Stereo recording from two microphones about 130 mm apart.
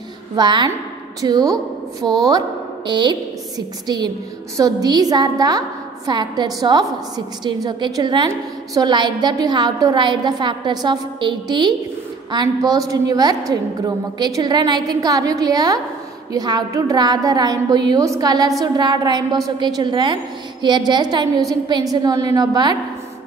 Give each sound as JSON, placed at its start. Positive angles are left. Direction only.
{"t": 0.4, "sound": "a woman's voice", "side_deg": -35}